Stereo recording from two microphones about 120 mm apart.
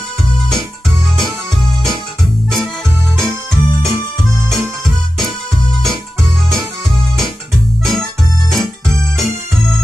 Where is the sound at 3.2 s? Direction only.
5° left (ahead or behind).